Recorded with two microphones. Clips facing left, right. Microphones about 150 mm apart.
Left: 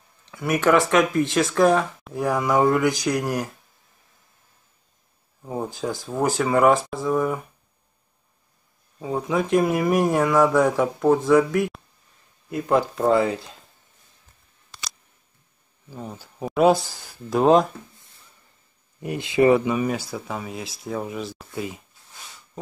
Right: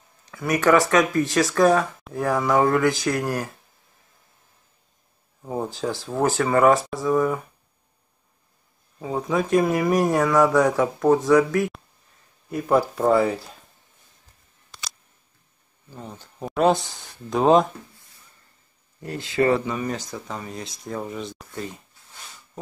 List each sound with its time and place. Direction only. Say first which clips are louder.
0.3 s speech: right 1 dB; centre (ahead or behind)
2.1 s speech: even; 10° left (ahead or behind)
5.4 s speech: right 1 dB; centre (ahead or behind)
9.0 s speech: even; centre (ahead or behind)
12.5 s speech: right 1 dB; 10° right (ahead or behind)
15.9 s speech: left 3 dB; 10° left (ahead or behind)
19.0 s speech: left 3 dB; 15° left (ahead or behind)